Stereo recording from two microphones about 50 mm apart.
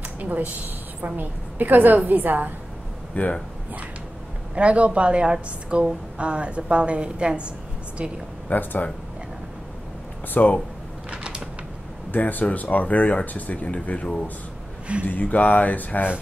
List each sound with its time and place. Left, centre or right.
0.2 s a woman's voice: right
3.2 s speech: left
4.6 s a woman's voice: right
8.5 s speech: left
10.3 s speech: left
11.1 s a sound: centre
12.1 s speech: left
15.0 s speech: left